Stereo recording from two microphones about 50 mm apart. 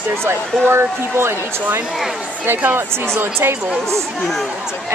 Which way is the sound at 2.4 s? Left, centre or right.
Right.